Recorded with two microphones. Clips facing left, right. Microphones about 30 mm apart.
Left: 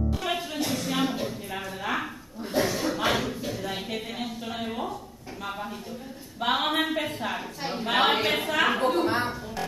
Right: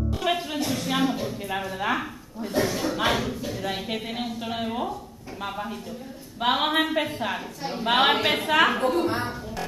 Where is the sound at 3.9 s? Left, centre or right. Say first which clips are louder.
Right 3 dB; centre.